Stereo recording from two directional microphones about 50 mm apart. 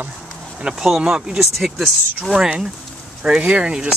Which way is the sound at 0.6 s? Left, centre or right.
Centre.